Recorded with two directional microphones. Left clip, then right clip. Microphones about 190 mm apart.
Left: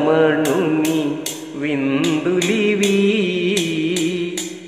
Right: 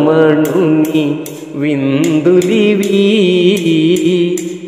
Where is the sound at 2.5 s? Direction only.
45° right (ahead or behind).